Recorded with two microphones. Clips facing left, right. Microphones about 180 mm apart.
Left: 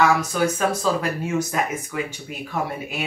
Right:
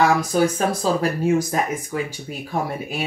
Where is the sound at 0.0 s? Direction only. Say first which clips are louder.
Right 2 dB; 35° right (ahead or behind).